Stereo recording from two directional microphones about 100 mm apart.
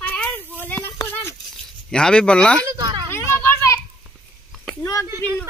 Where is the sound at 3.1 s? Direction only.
25° left (ahead or behind).